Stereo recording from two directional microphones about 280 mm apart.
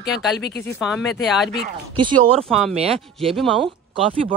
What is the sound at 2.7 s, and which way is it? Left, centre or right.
Speech, right.